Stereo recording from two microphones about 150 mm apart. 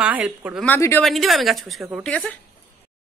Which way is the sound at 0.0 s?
10° right (ahead or behind).